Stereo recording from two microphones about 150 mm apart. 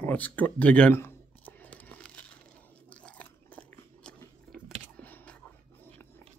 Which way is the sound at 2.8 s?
10° left (ahead or behind).